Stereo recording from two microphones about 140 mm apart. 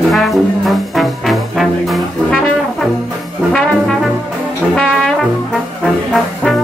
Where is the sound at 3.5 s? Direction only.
5° left (ahead or behind).